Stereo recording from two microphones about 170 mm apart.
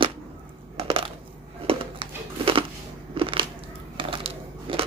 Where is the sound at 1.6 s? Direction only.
35° right (ahead or behind).